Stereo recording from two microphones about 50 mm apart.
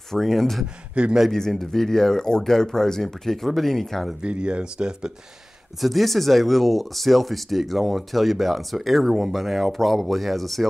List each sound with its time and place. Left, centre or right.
0.1 s speech: centre
1.0 s speech: right
1.3 s speech: centre
4.2 s speech: right
5.8 s speech: centre